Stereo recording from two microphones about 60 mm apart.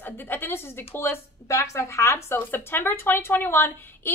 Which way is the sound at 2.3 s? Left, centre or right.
Left.